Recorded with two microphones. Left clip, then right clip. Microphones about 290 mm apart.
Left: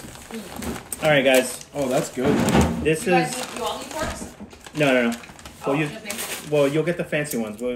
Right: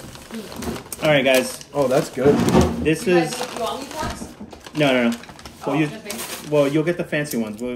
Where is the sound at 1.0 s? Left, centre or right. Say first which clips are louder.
Right 1 dB; centre.